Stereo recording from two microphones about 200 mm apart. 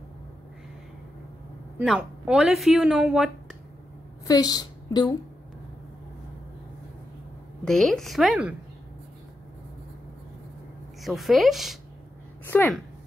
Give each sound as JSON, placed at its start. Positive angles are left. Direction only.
{"t": 1.8, "sound": "a woman's voice", "side_deg": -5}
{"t": 4.3, "sound": "a woman's voice", "side_deg": 20}
{"t": 7.6, "sound": "a woman's voice", "side_deg": 0}
{"t": 11.0, "sound": "a woman's voice", "side_deg": 0}
{"t": 12.4, "sound": "speech", "side_deg": 10}